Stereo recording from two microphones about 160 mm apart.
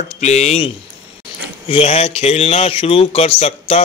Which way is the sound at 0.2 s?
45° left (ahead or behind).